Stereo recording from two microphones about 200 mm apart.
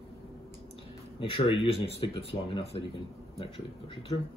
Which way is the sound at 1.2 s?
25° left (ahead or behind).